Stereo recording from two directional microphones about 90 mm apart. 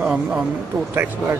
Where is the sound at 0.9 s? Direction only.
25° right (ahead or behind).